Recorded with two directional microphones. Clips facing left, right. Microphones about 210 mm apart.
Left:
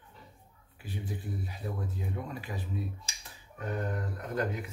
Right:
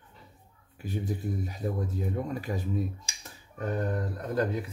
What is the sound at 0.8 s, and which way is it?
Speech, 40° right (ahead or behind).